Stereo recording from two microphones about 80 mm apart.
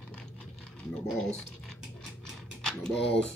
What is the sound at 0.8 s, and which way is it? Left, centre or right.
Speech, centre.